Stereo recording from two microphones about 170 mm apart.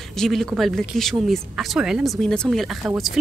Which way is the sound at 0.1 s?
Centre (ahead or behind).